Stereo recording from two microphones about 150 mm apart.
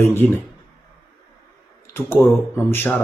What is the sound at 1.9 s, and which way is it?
Speech, 15° left (ahead or behind).